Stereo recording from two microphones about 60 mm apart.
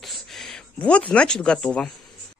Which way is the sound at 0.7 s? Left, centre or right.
Left.